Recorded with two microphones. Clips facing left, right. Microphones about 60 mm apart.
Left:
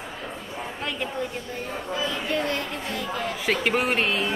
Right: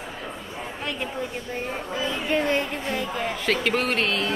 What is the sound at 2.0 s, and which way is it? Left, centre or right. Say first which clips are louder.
Speech: right 2 dB; right.